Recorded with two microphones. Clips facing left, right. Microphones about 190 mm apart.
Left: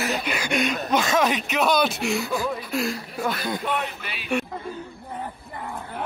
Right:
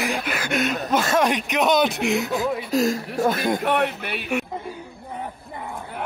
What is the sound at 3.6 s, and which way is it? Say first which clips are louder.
Speech: right 6 dB; 70° right (ahead or behind).